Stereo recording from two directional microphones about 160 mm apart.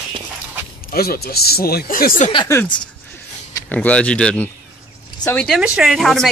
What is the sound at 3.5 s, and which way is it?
Speech, 10° left (ahead or behind).